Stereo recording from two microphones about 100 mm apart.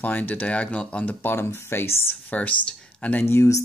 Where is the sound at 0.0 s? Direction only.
15° left (ahead or behind).